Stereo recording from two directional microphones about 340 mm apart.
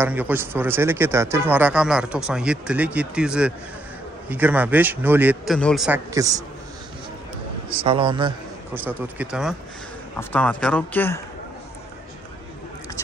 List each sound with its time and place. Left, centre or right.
0.0 s a man's voice: centre
7.7 s a man's voice: centre